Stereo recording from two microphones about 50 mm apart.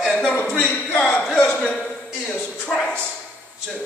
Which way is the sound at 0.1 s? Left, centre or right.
Left.